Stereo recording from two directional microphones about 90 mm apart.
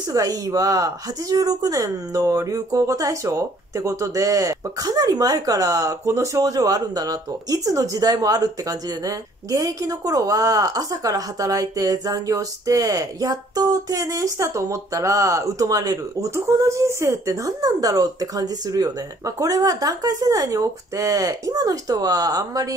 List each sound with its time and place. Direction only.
0.1 s a woman's voice: 45° right (ahead or behind)
16.3 s a woman's voice: 35° right (ahead or behind)